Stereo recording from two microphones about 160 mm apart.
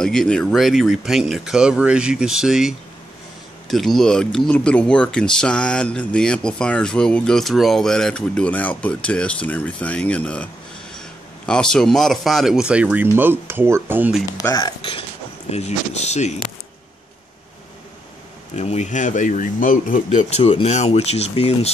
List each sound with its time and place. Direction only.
0.0 s a man's voice: 5° left (ahead or behind); by 14.1 s 15° right (ahead or behind)
14.3 s speech: 20° left (ahead or behind)
15.5 s speech: 45° left (ahead or behind)
18.6 s speech: 45° left (ahead or behind)